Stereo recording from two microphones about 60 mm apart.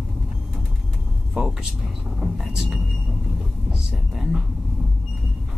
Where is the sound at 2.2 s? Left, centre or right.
Centre.